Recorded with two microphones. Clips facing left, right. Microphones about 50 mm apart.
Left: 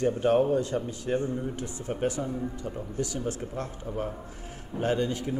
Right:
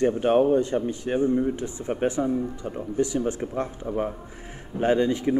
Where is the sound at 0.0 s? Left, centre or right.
Right.